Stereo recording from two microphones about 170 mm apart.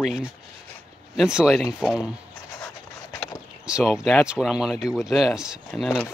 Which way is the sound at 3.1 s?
5° right (ahead or behind).